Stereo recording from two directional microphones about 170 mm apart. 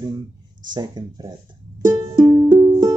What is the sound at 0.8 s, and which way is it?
Speech, 25° right (ahead or behind).